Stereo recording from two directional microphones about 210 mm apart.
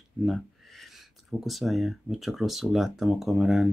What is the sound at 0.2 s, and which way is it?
Speech, centre (ahead or behind).